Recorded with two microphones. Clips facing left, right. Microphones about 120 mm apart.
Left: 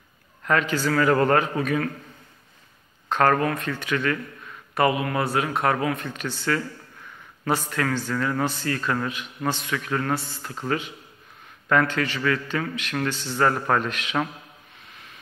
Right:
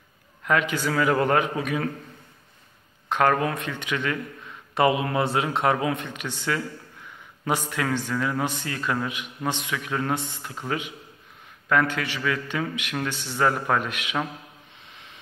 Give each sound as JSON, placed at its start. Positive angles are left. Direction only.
{"t": 0.4, "sound": "a man's voice", "side_deg": -10}
{"t": 3.1, "sound": "a man's voice", "side_deg": -15}
{"t": 14.9, "sound": "vehicle", "side_deg": -25}